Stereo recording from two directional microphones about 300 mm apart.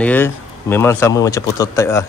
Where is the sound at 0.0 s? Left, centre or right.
Centre.